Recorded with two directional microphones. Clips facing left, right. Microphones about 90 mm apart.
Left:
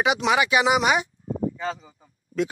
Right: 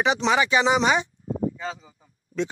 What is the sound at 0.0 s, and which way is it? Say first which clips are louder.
Speech: even; 10° left (ahead or behind).